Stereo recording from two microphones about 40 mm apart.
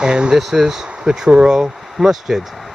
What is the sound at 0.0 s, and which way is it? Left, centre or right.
Speech, centre.